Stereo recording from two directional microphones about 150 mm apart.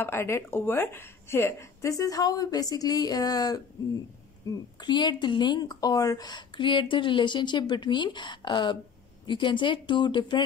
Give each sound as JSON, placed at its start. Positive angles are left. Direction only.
{"t": 0.0, "sound": "a woman's voice", "side_deg": 15}